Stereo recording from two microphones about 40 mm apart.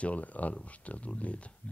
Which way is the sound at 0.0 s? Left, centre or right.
Left.